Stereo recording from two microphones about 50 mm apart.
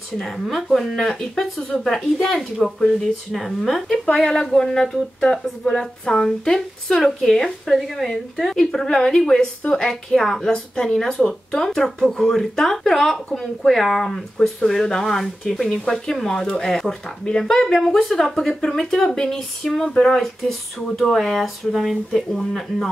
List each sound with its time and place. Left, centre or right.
0.2 s speech: centre
4.0 s speech: centre